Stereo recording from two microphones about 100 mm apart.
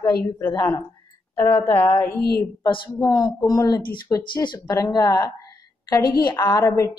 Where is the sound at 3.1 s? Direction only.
45° left (ahead or behind).